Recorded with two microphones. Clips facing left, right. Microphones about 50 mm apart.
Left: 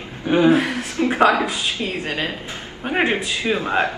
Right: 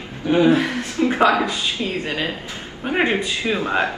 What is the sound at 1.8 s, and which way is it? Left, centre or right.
Speech, left.